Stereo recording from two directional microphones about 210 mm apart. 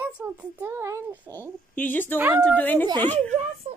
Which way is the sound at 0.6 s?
10° right (ahead or behind).